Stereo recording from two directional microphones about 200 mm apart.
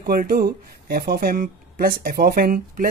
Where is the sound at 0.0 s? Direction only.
45° right (ahead or behind).